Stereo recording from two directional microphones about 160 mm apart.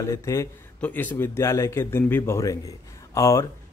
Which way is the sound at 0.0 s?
20° left (ahead or behind).